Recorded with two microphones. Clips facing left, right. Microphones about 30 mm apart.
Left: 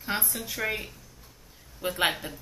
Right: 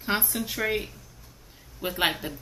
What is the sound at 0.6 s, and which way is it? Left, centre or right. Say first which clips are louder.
Speech: right 2 dB; centre.